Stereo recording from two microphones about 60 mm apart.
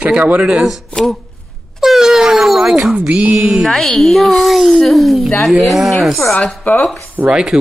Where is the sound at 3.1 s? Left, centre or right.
Right.